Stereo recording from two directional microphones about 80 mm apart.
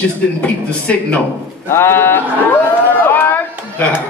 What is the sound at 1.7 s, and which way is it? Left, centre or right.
Speech, left.